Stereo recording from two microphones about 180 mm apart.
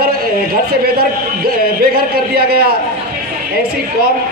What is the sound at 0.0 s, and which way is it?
A man's voice, 60° right (ahead or behind).